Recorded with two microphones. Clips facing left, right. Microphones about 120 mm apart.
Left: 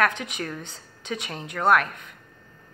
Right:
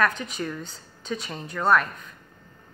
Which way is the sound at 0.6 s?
65° left (ahead or behind).